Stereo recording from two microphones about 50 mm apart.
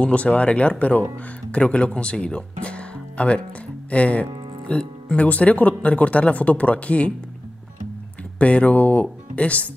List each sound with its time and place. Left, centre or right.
0.0 s speech: left
8.4 s speech: left